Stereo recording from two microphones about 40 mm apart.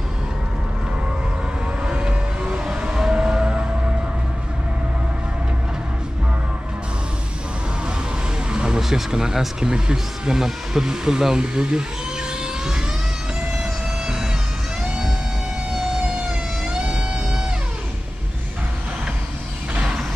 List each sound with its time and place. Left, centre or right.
1.9 s a sound: centre
8.5 s a sound: right
8.8 s speech: centre
13.6 s music: centre
14.8 s vehicle: centre
16.3 s vehicle: right